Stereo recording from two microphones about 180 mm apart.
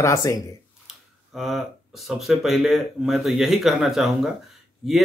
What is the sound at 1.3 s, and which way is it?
Speech, centre (ahead or behind).